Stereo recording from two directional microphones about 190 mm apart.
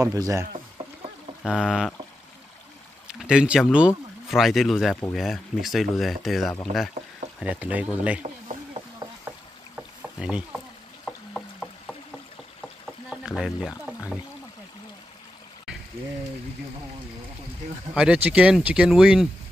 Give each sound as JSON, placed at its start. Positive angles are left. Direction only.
{"t": 0.0, "sound": "speech", "side_deg": -20}
{"t": 1.4, "sound": "speech", "side_deg": 0}
{"t": 3.1, "sound": "speech", "side_deg": -5}
{"t": 8.2, "sound": "a sound", "side_deg": -40}
{"t": 10.1, "sound": "speech", "side_deg": -5}
{"t": 11.1, "sound": "a sound", "side_deg": 5}
{"t": 13.1, "sound": "pour", "side_deg": -5}
{"t": 17.9, "sound": "speech", "side_deg": -5}